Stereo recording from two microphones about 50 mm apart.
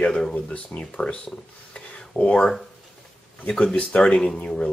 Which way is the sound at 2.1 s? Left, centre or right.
Left.